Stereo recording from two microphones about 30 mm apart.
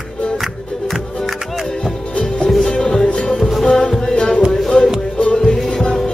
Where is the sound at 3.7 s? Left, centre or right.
Left.